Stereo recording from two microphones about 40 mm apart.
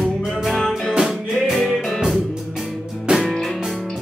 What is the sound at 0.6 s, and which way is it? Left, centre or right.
Music, centre.